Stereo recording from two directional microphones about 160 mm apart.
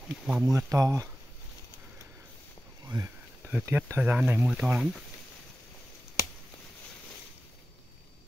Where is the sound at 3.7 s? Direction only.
15° right (ahead or behind).